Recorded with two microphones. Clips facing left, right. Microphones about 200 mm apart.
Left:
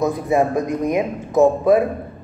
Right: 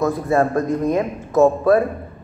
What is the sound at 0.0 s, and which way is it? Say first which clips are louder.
A woman's voice: even; 15° left (ahead or behind).